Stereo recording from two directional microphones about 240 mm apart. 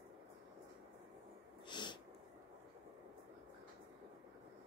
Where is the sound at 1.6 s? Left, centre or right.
Centre.